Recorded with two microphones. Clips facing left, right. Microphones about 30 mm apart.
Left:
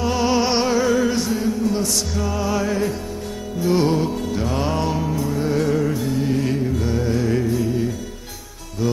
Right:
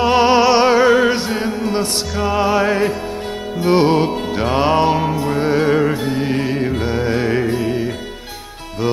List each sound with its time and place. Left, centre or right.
0.0 s music: right